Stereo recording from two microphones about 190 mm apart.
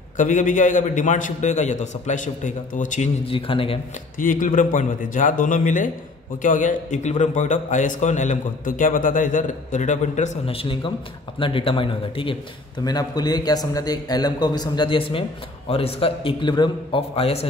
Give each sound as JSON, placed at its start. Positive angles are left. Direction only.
{"t": 0.2, "sound": "a man's voice", "side_deg": 40}
{"t": 3.3, "sound": "a man's voice", "side_deg": 30}
{"t": 4.2, "sound": "a man's voice", "side_deg": 45}